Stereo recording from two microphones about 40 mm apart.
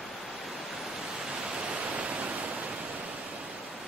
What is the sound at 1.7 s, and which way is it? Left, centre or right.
Pink noise, right.